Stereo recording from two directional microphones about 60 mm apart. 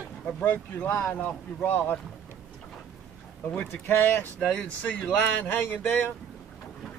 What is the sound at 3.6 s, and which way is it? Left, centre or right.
Speech, left.